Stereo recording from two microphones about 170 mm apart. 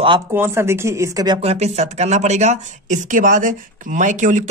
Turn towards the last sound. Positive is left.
turn(degrees=-45)  # may be behind; listen again after turning